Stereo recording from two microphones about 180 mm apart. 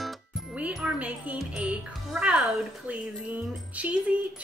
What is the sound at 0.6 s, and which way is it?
Speech, 5° right (ahead or behind).